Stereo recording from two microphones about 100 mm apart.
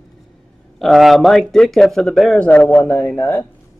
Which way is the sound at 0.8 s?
Centre (ahead or behind).